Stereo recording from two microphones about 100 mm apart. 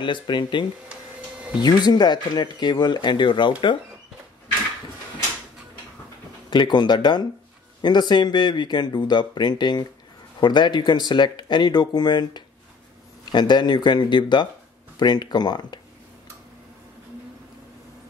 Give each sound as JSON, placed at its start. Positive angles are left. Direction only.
{"t": 0.0, "sound": "speech", "side_deg": 55}
{"t": 6.5, "sound": "speech", "side_deg": 50}